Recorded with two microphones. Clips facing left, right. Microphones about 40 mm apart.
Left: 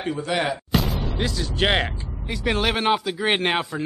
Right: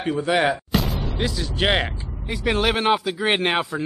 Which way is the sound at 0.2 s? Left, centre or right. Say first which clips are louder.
Right 5 dB; centre.